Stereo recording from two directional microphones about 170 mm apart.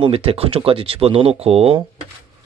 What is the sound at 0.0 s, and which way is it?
Speech, 35° right (ahead or behind).